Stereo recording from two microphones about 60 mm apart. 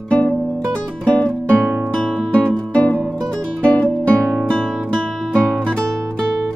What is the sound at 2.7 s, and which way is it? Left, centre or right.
Music, left.